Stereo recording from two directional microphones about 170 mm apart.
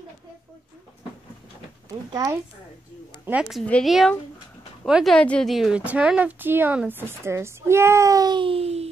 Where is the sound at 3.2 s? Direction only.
5° right (ahead or behind); by 8.9 s 35° right (ahead or behind).